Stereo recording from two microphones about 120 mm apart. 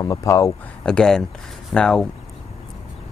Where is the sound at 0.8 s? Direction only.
5° left (ahead or behind).